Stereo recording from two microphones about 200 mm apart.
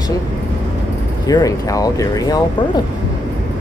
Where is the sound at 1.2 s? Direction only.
20° left (ahead or behind).